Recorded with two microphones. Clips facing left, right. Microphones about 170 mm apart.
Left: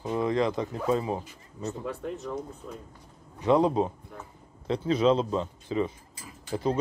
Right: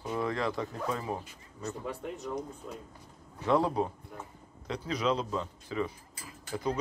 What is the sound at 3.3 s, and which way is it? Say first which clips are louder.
Speech: left 5 dB; 20° left (ahead or behind).